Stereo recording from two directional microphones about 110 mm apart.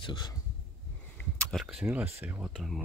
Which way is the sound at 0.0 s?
40° left (ahead or behind).